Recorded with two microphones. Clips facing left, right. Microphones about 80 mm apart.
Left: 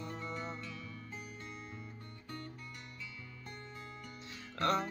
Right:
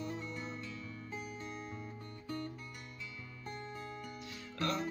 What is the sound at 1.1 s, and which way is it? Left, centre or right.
Music, centre.